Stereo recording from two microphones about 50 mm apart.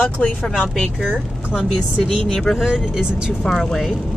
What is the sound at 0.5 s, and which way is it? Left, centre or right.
Speech, centre.